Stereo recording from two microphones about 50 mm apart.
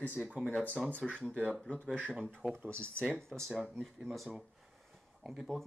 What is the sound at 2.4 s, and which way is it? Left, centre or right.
Speech, right.